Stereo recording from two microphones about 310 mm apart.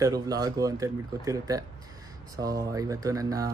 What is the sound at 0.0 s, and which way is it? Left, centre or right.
Speech, centre.